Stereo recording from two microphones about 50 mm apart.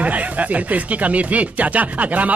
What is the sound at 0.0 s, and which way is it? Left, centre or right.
Speech, right.